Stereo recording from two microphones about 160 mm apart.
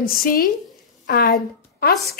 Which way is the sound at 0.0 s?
65° left (ahead or behind).